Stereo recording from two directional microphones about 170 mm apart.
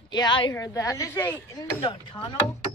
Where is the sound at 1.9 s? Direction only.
30° left (ahead or behind).